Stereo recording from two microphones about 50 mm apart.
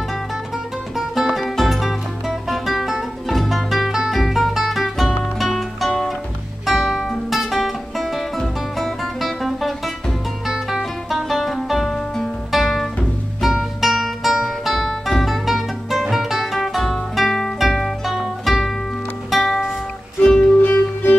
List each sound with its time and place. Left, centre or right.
0.9 s music: centre
20.2 s music: centre
20.6 s music: left